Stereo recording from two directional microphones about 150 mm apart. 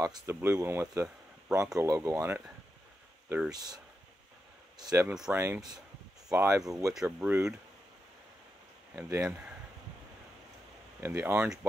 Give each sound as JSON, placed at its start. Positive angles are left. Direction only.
{"t": 0.0, "sound": "speech", "side_deg": -20}
{"t": 3.5, "sound": "speech", "side_deg": -25}
{"t": 5.0, "sound": "speech", "side_deg": -5}
{"t": 5.3, "sound": "speech", "side_deg": -15}
{"t": 6.9, "sound": "speech", "side_deg": -5}
{"t": 8.9, "sound": "speech", "side_deg": -20}
{"t": 11.0, "sound": "speech", "side_deg": -15}